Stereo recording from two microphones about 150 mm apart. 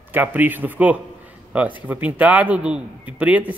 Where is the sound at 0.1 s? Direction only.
10° right (ahead or behind).